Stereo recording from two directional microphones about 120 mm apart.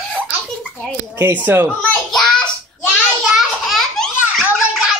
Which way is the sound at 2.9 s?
5° right (ahead or behind).